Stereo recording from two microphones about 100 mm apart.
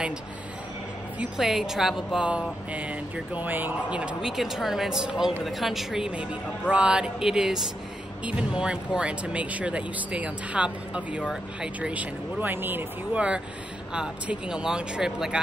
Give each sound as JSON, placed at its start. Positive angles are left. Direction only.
{"t": 1.4, "sound": "speech", "side_deg": -5}
{"t": 2.2, "sound": "speech", "side_deg": -10}